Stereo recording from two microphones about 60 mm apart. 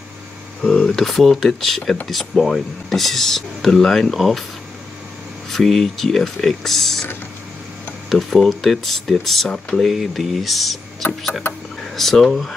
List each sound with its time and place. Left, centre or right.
0.6 s speech: centre
5.5 s speech: centre
8.1 s speech: centre
11.8 s speech: centre